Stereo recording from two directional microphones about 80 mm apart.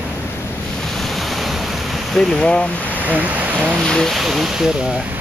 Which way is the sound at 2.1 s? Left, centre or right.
Centre.